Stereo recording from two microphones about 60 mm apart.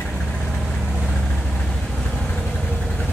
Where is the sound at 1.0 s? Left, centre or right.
Centre.